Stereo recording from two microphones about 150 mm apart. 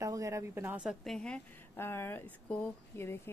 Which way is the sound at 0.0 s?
20° right (ahead or behind).